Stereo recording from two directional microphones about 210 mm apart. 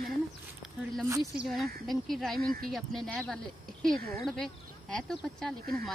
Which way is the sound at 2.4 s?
45° right (ahead or behind).